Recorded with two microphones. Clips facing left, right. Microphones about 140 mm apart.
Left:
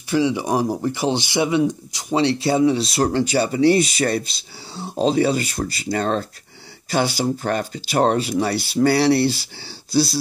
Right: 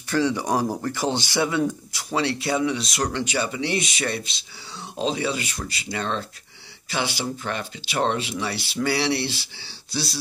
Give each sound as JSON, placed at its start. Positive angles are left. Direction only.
{"t": 0.1, "sound": "speech", "side_deg": 15}
{"t": 2.1, "sound": "speech", "side_deg": 30}